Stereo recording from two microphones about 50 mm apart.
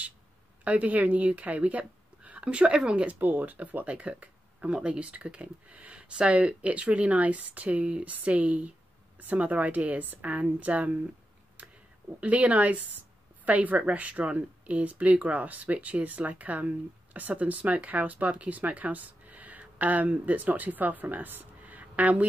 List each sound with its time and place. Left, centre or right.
0.7 s speech: right
3.1 s speech: right
12.2 s speech: right